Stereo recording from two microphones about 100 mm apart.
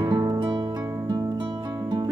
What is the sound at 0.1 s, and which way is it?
Music, 45° right (ahead or behind).